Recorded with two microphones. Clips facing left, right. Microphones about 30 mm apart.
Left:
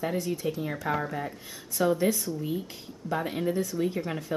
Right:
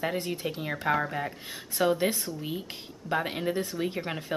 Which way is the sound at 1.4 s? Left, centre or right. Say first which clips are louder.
Even; right.